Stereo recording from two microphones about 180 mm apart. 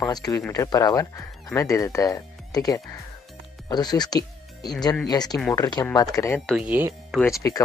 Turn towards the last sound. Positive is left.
turn(degrees=20)  # may be behind; listen again after turning